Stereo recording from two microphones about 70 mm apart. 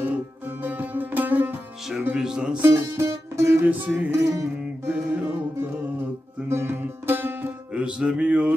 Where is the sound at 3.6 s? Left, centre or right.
Right.